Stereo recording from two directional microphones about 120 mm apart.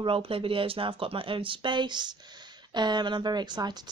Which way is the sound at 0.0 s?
50° right (ahead or behind).